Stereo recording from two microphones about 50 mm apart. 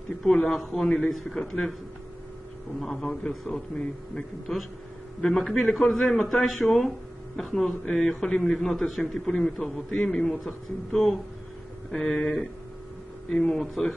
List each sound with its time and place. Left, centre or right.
0.2 s speech: centre
0.8 s a man's voice: centre
1.1 s a man's voice: centre
2.8 s a man's voice: centre